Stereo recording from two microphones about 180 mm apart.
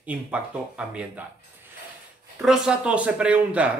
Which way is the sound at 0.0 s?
5° right (ahead or behind).